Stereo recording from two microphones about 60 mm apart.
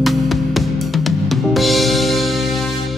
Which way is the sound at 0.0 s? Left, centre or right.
Centre.